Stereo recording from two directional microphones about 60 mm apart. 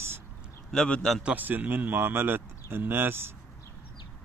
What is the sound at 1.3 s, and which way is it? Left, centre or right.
Speech, right.